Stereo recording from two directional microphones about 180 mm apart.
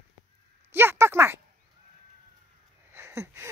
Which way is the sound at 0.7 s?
15° right (ahead or behind).